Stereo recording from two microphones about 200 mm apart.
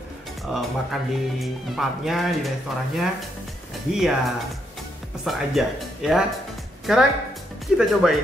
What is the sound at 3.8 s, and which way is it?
A man's voice, centre (ahead or behind).